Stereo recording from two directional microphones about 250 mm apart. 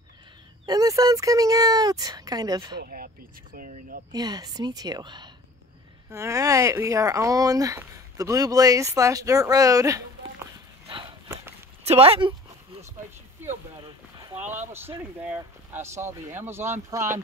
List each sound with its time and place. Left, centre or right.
0.7 s speech: centre
2.8 s speech: right
4.1 s speech: centre
11.8 s a sound: right
14.7 s speech: centre